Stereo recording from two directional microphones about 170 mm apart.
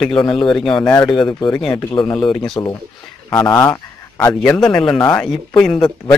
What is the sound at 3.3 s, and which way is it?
A man's voice, 15° left (ahead or behind).